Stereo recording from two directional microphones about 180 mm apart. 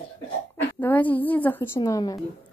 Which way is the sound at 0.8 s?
10° left (ahead or behind).